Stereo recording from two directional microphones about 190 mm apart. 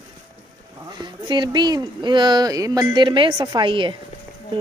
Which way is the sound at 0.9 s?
25° right (ahead or behind).